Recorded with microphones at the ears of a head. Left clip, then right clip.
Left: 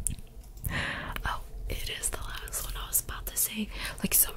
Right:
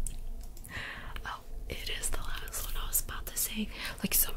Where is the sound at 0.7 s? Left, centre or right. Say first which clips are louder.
Left 8 dB; left.